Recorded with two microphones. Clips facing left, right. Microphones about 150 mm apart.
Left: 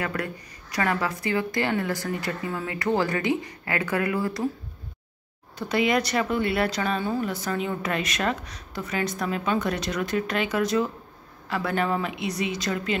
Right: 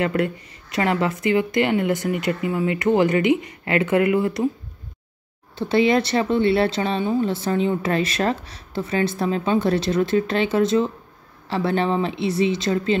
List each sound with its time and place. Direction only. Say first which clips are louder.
0.0 s speech: right 8 dB; 25° right (ahead or behind)
5.6 s speech: right 5 dB; 30° right (ahead or behind)